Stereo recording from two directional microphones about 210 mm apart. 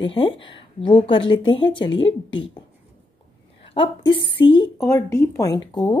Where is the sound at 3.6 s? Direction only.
25° left (ahead or behind).